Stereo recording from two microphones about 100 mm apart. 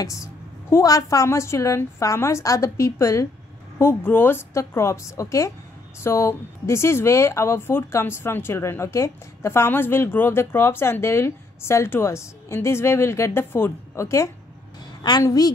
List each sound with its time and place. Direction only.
0.0 s a woman's voice: 30° left (ahead or behind)
3.7 s speech: 20° left (ahead or behind)
15.0 s a woman's voice: 40° left (ahead or behind)